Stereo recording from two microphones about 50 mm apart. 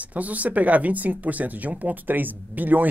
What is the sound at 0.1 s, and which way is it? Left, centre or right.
Speech, right.